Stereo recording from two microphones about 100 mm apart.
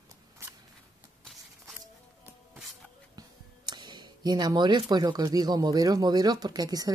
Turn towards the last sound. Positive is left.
turn(degrees=-40)  # may be behind; listen again after turning